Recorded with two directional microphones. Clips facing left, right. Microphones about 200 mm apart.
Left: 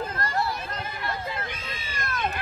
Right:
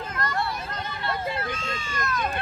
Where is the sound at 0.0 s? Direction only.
30° left (ahead or behind).